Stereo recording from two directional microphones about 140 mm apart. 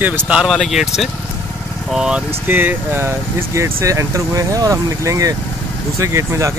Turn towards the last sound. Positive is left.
turn(degrees=-20)  # may be behind; listen again after turning